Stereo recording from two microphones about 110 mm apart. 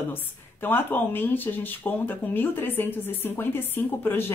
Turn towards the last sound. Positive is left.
turn(degrees=20)  # may be behind; listen again after turning